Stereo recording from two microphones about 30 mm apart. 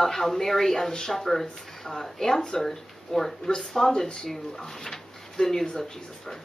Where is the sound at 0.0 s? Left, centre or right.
Centre.